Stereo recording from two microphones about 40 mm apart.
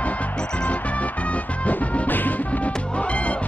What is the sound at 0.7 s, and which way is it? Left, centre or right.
Music, left.